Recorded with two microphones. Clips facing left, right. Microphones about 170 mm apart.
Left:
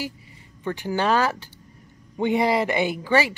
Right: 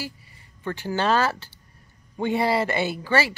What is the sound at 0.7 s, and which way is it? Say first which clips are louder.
Speech: left 1 dB; 15° left (ahead or behind).